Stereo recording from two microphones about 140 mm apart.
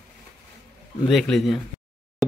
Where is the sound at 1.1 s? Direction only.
Centre (ahead or behind).